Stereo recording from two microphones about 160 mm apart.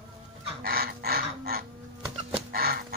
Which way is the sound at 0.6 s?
75° right (ahead or behind).